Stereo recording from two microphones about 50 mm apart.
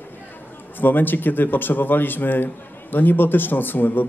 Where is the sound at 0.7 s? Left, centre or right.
Left.